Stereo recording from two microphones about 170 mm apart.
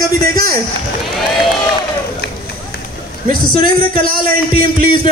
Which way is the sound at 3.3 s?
60° right (ahead or behind).